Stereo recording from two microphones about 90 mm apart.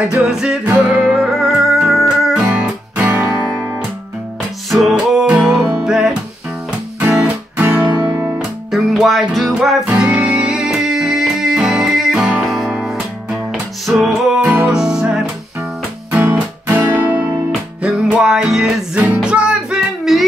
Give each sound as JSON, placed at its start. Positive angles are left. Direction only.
{"t": 0.1, "sound": "music", "side_deg": -10}
{"t": 4.6, "sound": "music", "side_deg": 0}
{"t": 8.7, "sound": "music", "side_deg": 0}
{"t": 14.4, "sound": "music", "side_deg": -20}
{"t": 14.7, "sound": "music", "side_deg": -10}
{"t": 16.1, "sound": "music", "side_deg": -20}
{"t": 17.8, "sound": "music", "side_deg": -10}
{"t": 20.1, "sound": "music", "side_deg": 0}